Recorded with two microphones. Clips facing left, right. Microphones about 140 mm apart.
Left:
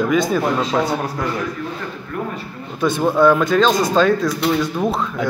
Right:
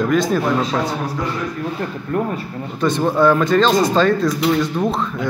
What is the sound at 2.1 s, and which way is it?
Speech, 45° right (ahead or behind).